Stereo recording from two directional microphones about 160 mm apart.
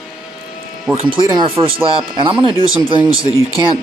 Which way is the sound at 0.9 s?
25° right (ahead or behind).